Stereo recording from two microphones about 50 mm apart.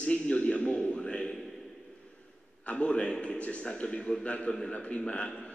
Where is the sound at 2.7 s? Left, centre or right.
Left.